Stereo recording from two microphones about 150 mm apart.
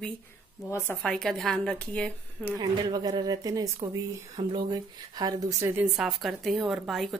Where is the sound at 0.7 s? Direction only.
15° left (ahead or behind).